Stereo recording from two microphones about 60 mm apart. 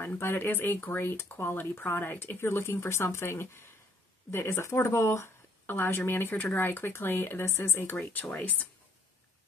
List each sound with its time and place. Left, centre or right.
0.0 s speech: left